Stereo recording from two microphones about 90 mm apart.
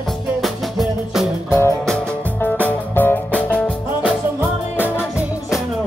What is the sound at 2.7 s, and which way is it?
Music, 20° left (ahead or behind).